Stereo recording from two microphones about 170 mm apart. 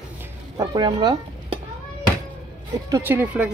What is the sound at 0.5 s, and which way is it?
Speech, 20° right (ahead or behind).